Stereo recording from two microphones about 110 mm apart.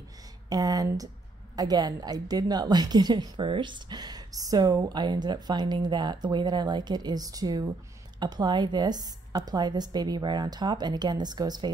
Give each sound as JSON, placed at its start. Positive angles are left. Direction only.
{"t": 0.5, "sound": "a woman's voice", "side_deg": -35}